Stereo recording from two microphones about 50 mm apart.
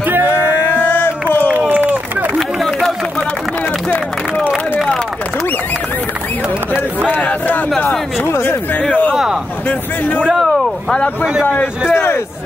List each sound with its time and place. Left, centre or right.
0.3 s a sound: left
2.3 s a sound: centre
7.1 s speech: left
8.2 s speech: left
9.1 s speech: centre
9.7 s speech: left
10.3 s a sound: centre
11.4 s speech: left
11.9 s speech: left